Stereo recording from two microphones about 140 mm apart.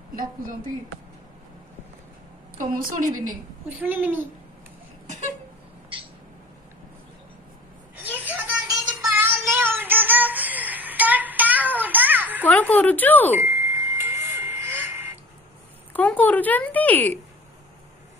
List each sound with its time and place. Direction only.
0.1 s speech: 85° right
2.8 s a woman's voice: 70° right (ahead or behind)
3.6 s speech: 15° right (ahead or behind)
5.0 s a sound: 60° right (ahead or behind)
8.0 s a sound: 10° right (ahead or behind)
9.1 s child singing: 15° right (ahead or behind)
12.4 s smoke detector: 10° left (ahead or behind)
13.4 s a sound: 15° right (ahead or behind)
15.9 s speech: 10° left (ahead or behind)